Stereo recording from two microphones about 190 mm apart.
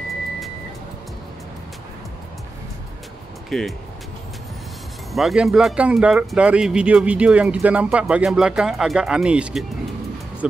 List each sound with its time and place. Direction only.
3.4 s speech: centre (ahead or behind)
5.1 s speech: centre (ahead or behind)